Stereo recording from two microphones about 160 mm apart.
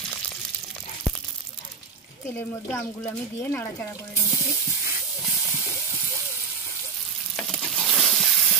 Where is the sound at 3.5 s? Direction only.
15° left (ahead or behind).